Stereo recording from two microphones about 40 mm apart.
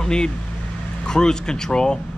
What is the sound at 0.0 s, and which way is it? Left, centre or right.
Speech, centre.